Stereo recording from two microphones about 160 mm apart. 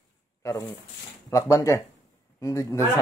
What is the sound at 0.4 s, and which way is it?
A man's voice, 20° left (ahead or behind).